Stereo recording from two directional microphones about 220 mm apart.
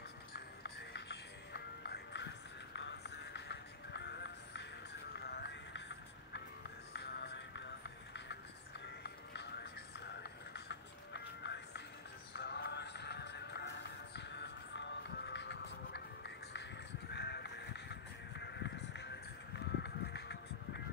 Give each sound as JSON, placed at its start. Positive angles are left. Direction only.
{"t": 0.3, "sound": "music", "side_deg": 50}
{"t": 8.8, "sound": "music", "side_deg": 50}
{"t": 17.1, "sound": "music", "side_deg": 50}